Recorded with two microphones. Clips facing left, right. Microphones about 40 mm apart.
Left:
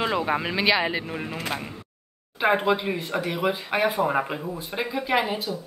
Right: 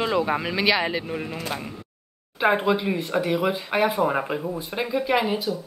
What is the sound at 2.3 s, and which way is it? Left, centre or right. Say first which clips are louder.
Speech: right 1 dB; centre.